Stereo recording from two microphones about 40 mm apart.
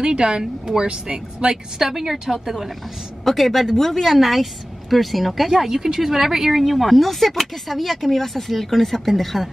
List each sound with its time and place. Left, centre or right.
0.0 s speech: right
1.8 s a woman's voice: centre
3.3 s speech: centre
5.5 s speech: centre